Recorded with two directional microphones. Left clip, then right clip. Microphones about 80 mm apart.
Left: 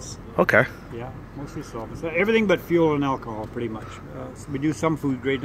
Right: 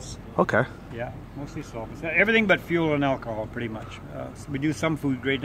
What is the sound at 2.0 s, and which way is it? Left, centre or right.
Speech, right.